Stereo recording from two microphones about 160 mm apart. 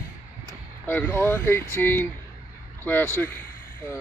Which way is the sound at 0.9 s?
10° left (ahead or behind).